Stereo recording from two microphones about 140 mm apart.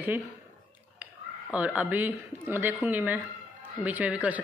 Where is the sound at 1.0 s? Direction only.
10° right (ahead or behind).